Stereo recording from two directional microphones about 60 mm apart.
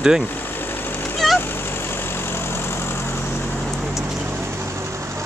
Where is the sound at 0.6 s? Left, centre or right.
Left.